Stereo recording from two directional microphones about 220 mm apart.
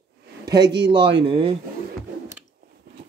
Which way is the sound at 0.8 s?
20° right (ahead or behind).